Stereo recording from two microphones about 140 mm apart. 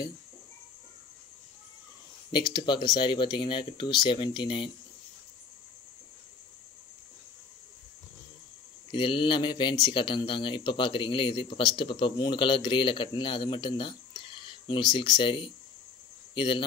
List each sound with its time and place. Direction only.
2.3 s speech: 35° left (ahead or behind)
8.9 s speech: 35° left (ahead or behind)